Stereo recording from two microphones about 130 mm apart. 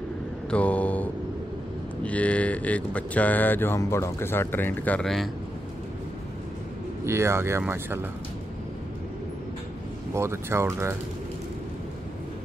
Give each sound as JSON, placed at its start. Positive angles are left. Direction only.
{"t": 0.5, "sound": "speech", "side_deg": 10}
{"t": 7.1, "sound": "speech", "side_deg": -20}
{"t": 10.1, "sound": "speech", "side_deg": -20}